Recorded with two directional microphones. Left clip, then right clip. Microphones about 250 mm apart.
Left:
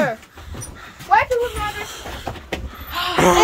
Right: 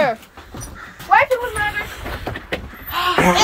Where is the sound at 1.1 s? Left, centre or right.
Centre.